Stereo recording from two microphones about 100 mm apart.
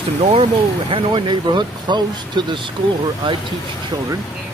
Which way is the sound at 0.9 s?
55° right (ahead or behind).